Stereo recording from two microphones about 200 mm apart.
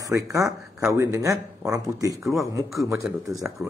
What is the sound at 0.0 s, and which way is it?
A man's voice, 15° right (ahead or behind).